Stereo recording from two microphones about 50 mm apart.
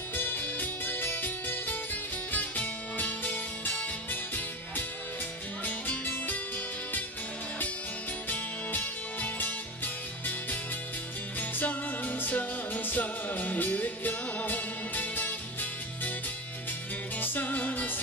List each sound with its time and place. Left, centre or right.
0.1 s music: left
5.7 s music: left
8.3 s music: left
11.3 s music: left
17.2 s music: left